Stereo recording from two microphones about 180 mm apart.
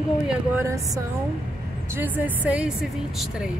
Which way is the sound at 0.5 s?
15° right (ahead or behind).